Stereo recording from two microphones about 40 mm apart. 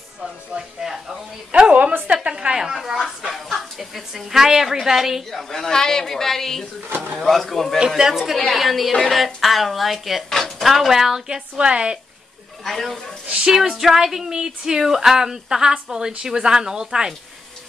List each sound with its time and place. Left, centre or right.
0.2 s speech: centre
1.5 s a sound: right
2.3 s a sound: centre
5.3 s a woman's voice: centre
8.0 s speech: centre
11.2 s a woman's voice: right
12.6 s speech: centre
13.5 s speech: centre